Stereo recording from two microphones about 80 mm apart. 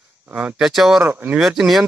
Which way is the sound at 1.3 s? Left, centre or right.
Centre.